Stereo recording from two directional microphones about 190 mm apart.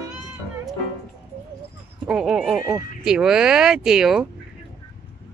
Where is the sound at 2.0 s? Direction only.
5° right (ahead or behind).